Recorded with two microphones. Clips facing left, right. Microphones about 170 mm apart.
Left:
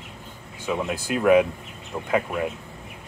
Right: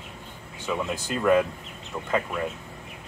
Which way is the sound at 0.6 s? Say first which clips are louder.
Left 2 dB; 15° left (ahead or behind).